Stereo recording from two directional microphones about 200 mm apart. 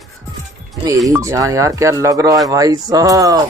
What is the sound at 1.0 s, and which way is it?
Speech, 15° right (ahead or behind).